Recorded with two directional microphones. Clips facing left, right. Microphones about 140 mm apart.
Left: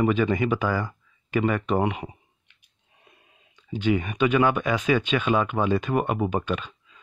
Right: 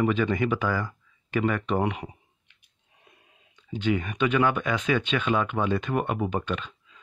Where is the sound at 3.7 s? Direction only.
10° left (ahead or behind).